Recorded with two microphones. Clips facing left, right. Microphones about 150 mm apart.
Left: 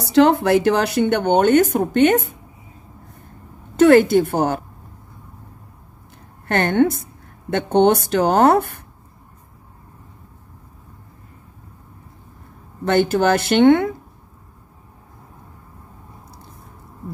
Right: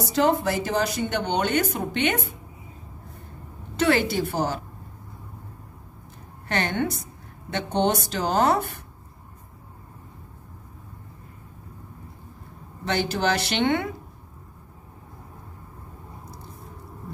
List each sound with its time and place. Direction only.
0.0 s speech: 75° left (ahead or behind); by 2.3 s 45° left (ahead or behind)
3.7 s speech: 50° left (ahead or behind)
6.4 s speech: 55° left (ahead or behind)
12.8 s speech: 50° left (ahead or behind)